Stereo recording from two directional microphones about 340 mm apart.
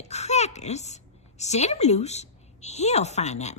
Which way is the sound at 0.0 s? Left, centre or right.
Centre.